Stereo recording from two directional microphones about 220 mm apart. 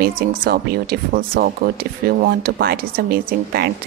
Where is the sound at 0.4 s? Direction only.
45° right (ahead or behind).